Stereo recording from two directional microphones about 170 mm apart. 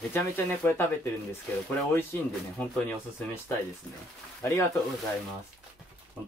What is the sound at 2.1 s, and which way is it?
Speech, 10° left (ahead or behind).